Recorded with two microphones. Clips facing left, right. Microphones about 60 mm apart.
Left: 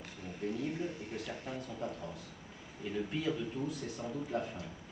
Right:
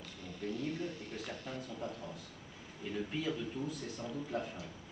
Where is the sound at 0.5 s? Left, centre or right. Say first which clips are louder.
Left 1 dB; left.